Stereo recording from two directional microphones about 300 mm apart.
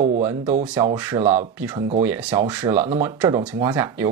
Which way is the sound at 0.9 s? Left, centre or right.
Centre.